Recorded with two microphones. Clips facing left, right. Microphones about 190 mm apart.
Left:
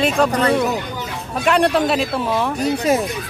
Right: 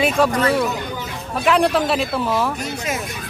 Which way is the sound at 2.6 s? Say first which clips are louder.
Left 8 dB; 35° left (ahead or behind).